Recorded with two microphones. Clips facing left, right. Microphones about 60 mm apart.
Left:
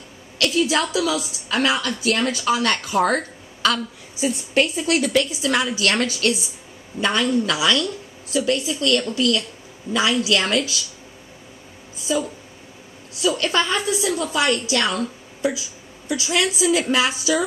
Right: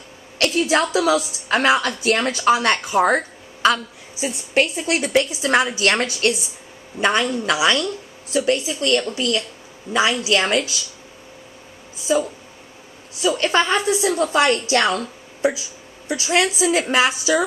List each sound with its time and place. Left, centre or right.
0.4 s a woman's voice: right
12.1 s a woman's voice: right